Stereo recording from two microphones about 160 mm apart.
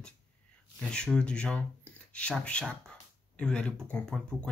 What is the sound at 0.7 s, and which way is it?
Speech, 5° left (ahead or behind).